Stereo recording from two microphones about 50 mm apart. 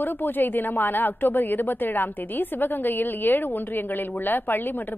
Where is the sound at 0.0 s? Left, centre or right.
Left.